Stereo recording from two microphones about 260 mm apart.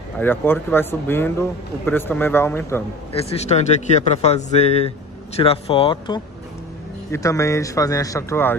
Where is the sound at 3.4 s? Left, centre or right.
Left.